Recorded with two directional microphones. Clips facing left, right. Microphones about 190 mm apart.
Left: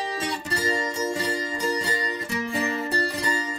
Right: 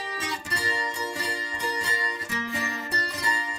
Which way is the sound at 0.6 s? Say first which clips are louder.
Left 7 dB; 40° left (ahead or behind).